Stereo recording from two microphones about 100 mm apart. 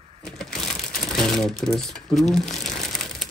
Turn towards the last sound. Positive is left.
turn(degrees=5)  # may be behind; listen again after turning